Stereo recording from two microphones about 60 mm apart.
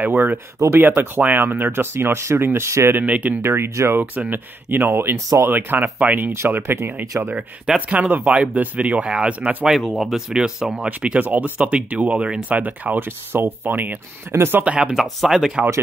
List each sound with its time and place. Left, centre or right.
0.0 s speech: right
3.0 s speech: right
3.4 s speech: right
4.0 s speech: right
6.3 s speech: right
7.9 s speech: right
9.7 s speech: centre
12.4 s speech: right
14.6 s speech: right
15.0 s speech: centre